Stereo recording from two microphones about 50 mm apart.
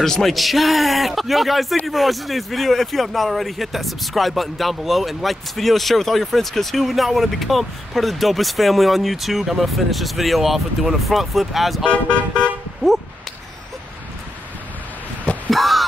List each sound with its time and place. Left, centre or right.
0.0 s speech: centre
11.8 s speech: centre
12.8 s speech: centre
15.5 s a sound: centre